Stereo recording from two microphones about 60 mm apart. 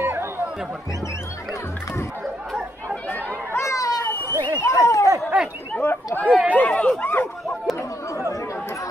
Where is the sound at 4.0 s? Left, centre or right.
Left.